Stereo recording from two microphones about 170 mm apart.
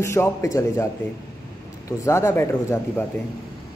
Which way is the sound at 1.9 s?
15° left (ahead or behind).